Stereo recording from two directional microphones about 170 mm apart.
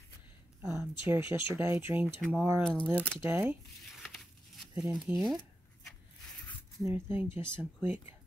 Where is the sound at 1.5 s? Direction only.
15° right (ahead or behind).